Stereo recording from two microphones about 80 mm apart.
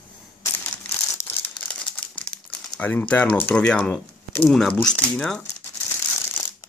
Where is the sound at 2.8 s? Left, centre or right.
Left.